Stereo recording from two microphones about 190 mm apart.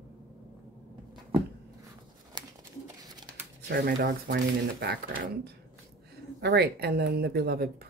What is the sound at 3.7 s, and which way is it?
Speech, 55° right (ahead or behind).